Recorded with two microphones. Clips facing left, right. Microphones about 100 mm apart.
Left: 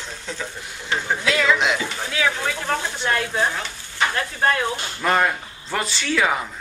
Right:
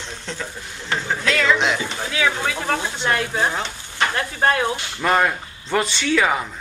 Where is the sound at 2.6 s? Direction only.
15° right (ahead or behind).